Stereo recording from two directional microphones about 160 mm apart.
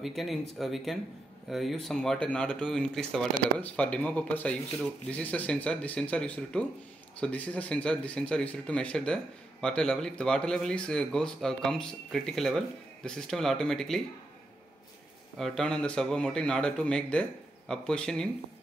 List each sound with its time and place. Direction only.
0.0 s speech: centre (ahead or behind)
15.3 s speech: centre (ahead or behind)